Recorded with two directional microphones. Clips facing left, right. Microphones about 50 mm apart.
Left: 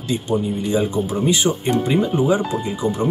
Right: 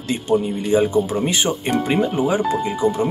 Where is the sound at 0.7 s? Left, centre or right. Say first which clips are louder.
Right 5 dB; right.